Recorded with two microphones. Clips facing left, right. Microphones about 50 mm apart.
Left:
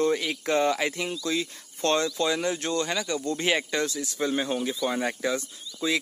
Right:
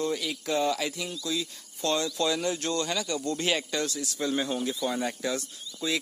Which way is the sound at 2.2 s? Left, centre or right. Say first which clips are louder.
Left 2 dB; left.